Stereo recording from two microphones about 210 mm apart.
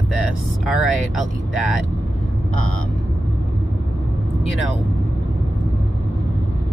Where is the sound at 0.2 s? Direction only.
Centre (ahead or behind).